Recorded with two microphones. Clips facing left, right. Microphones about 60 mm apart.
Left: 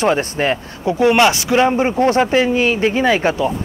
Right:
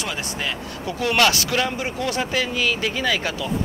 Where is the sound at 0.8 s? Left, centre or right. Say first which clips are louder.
Left 7 dB; left.